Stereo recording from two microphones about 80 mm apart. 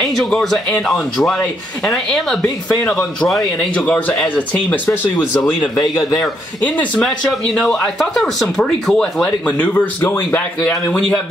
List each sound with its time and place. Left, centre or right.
0.0 s speech: centre
3.7 s speech: centre
7.5 s speech: centre
10.9 s speech: centre